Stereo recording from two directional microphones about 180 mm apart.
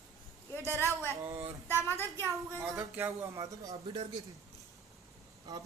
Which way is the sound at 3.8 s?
30° right (ahead or behind).